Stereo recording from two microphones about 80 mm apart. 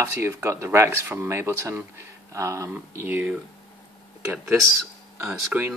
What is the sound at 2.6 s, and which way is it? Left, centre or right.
Speech, right.